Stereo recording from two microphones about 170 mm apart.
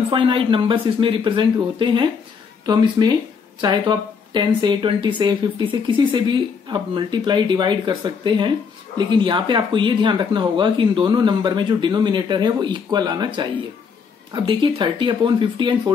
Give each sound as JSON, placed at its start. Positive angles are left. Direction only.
{"t": 0.1, "sound": "speech", "side_deg": -30}